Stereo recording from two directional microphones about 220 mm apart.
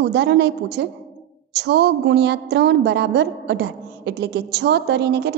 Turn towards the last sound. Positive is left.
turn(degrees=-50)  # may be behind; listen again after turning